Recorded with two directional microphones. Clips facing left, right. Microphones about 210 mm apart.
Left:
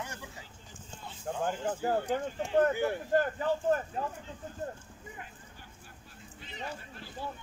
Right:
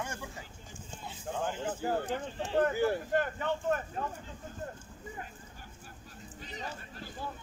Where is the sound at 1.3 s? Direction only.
50° left (ahead or behind).